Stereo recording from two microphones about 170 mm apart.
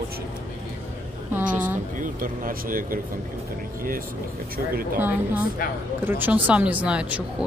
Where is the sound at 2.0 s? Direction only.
55° right (ahead or behind).